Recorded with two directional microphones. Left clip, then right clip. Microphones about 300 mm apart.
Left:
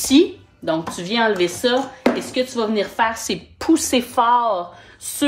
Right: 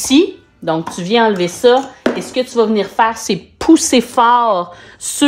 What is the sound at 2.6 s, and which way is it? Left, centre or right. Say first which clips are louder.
A woman's voice: right 8 dB; centre.